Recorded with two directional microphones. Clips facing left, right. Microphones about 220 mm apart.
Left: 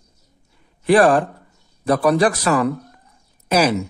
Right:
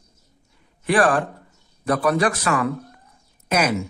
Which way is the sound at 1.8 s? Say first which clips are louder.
Left 4 dB; 35° left (ahead or behind).